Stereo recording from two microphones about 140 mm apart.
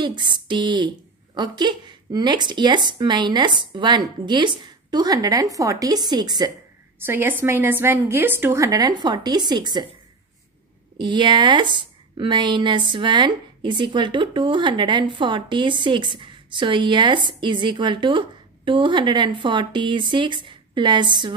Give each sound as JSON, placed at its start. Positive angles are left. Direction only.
{"t": 0.0, "sound": "a woman's voice", "side_deg": -35}
{"t": 7.1, "sound": "a woman's voice", "side_deg": -15}
{"t": 11.0, "sound": "a woman's voice", "side_deg": -35}